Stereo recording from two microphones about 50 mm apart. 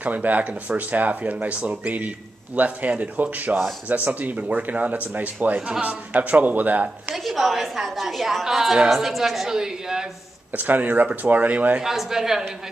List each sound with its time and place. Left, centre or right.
0.0 s speech: right
7.2 s a woman's voice: centre
10.5 s speech: right
11.8 s a woman's voice: centre